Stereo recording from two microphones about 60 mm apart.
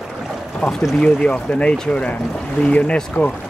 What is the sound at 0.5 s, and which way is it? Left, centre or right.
Speech, centre.